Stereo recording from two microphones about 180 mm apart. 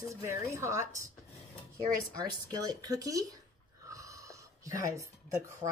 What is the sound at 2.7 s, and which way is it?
Speech, 20° right (ahead or behind).